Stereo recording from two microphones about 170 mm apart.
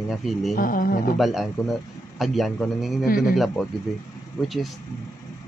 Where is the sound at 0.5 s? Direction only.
55° left (ahead or behind).